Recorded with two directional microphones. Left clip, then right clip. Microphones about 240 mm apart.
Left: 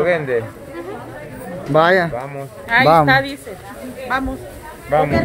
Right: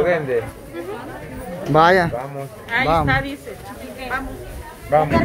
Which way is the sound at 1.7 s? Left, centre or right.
Centre.